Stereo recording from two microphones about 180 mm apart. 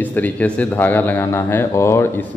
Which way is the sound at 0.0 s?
10° left (ahead or behind).